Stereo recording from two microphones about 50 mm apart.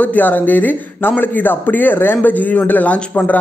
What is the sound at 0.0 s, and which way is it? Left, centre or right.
A man's voice, left.